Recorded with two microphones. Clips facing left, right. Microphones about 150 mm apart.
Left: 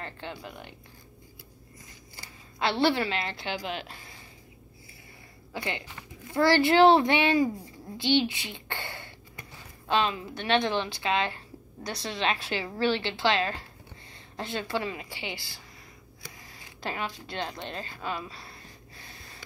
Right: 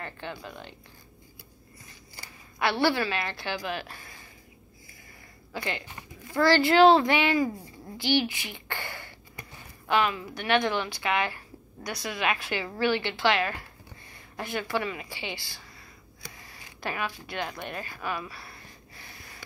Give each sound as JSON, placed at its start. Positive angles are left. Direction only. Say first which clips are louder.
{"t": 0.0, "sound": "a woman's voice", "louder": "right 1 dB", "side_deg": 20}
{"t": 2.6, "sound": "a woman's voice", "louder": "even", "side_deg": 20}
{"t": 5.5, "sound": "a woman's voice", "louder": "even", "side_deg": 20}
{"t": 16.3, "sound": "a sound", "louder": "even", "side_deg": 20}